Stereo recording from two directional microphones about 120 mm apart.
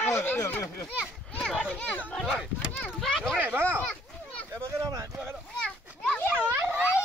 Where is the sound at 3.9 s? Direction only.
10° left (ahead or behind).